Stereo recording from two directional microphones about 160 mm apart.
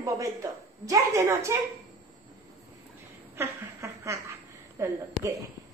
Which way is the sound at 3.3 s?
20° right (ahead or behind).